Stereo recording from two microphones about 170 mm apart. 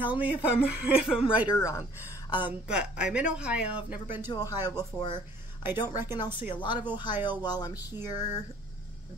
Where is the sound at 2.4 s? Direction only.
5° right (ahead or behind).